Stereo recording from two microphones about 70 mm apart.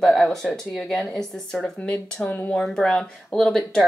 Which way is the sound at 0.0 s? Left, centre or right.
Centre.